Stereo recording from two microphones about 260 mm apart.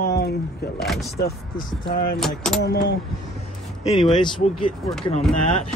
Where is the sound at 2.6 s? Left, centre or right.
Left.